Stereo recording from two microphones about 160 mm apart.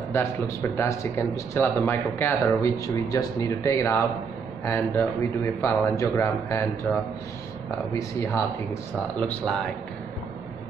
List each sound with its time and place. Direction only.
0.1 s speech: 15° left (ahead or behind)
9.2 s speech: 5° left (ahead or behind)